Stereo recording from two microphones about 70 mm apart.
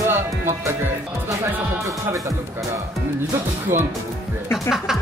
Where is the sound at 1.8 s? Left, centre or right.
Right.